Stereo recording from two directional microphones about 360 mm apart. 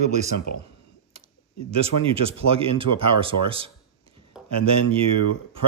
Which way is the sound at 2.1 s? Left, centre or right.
Centre.